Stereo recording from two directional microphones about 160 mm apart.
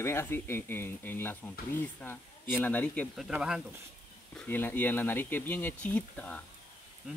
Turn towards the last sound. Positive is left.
turn(degrees=10)  # may be behind; listen again after turning